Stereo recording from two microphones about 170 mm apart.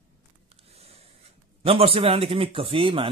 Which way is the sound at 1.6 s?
35° right (ahead or behind).